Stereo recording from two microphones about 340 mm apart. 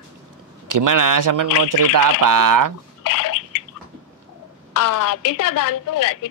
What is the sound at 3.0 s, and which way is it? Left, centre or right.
Bathtub, left.